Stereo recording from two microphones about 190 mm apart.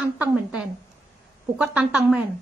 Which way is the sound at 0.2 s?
5° right (ahead or behind).